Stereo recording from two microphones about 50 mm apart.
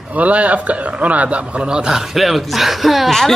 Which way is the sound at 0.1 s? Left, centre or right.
Right.